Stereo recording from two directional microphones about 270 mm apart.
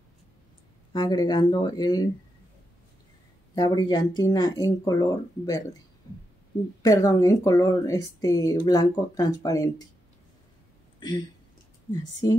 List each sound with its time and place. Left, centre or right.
0.9 s speech: centre
3.5 s speech: centre
6.8 s speech: centre
11.0 s speech: centre